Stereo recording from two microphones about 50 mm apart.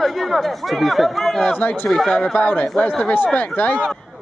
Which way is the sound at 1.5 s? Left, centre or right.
Left.